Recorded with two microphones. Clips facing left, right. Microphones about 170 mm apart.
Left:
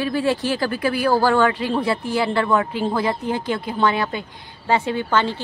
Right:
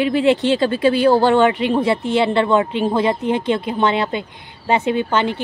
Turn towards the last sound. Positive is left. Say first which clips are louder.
# right 3 dB
turn(degrees=-20)  # may be behind; listen again after turning